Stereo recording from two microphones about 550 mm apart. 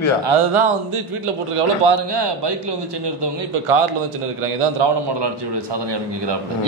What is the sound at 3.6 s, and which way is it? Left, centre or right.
A man's voice, right.